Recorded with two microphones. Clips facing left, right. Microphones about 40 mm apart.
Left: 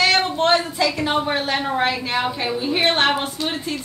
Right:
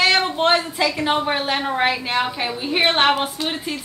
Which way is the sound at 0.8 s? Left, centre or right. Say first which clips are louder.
Right 1 dB; centre.